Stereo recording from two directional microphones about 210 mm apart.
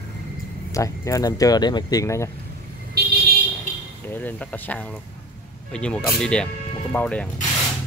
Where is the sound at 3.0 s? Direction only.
50° right (ahead or behind).